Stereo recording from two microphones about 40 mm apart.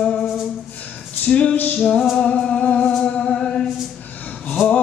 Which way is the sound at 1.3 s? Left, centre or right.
Left.